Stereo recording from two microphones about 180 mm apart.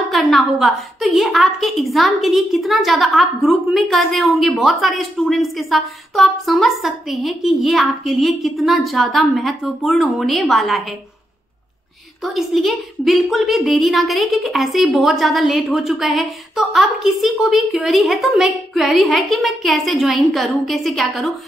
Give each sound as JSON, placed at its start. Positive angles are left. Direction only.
{"t": 0.1, "sound": "a woman's voice", "side_deg": 0}
{"t": 12.2, "sound": "a woman's voice", "side_deg": 0}